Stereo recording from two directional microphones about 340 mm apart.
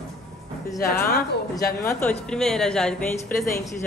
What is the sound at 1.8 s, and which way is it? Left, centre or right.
A woman's voice, centre.